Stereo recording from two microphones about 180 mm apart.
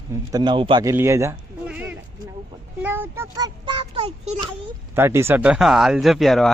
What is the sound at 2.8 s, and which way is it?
A child's voice, 10° right (ahead or behind).